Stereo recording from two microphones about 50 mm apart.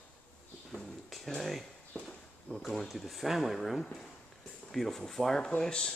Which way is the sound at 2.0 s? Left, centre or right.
Centre.